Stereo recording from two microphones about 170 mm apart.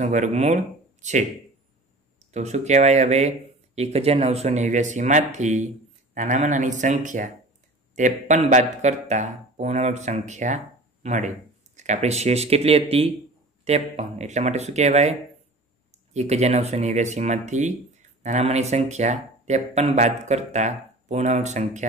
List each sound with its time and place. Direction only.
0.0 s speech: 45° right (ahead or behind)
2.3 s speech: 40° right (ahead or behind)